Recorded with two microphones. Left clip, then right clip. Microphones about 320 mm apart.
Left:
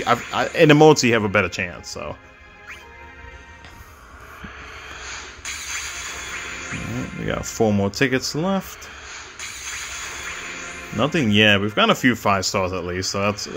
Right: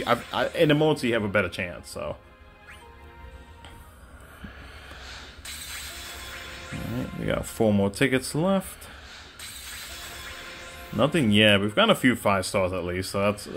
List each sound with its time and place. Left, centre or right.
0.3 s speech: centre
4.4 s music: centre
7.3 s speech: centre
9.1 s a sound: centre